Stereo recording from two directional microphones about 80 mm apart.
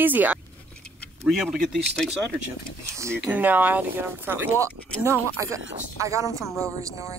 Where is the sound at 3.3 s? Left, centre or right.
Right.